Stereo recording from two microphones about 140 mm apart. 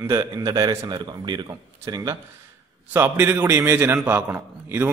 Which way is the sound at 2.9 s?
15° right (ahead or behind).